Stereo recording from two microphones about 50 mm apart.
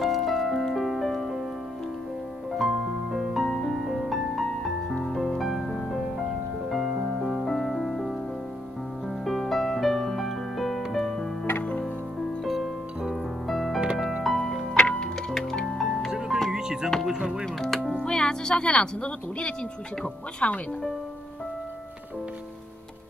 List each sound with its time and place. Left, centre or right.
0.0 s music: centre
2.5 s music: centre
9.2 s music: centre
13.5 s music: centre
14.8 s music: left
16.1 s music: centre
17.6 s music: centre
17.9 s music: centre
20.3 s speech: left